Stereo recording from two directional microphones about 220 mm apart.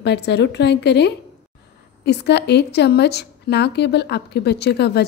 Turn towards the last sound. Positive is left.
turn(degrees=50)  # may be behind; listen again after turning